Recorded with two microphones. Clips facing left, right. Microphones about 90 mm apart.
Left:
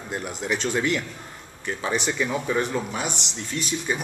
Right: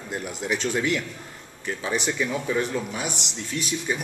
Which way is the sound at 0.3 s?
Centre (ahead or behind).